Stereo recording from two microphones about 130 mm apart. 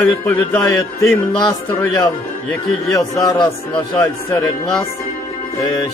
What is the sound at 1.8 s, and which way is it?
Speech, 25° left (ahead or behind).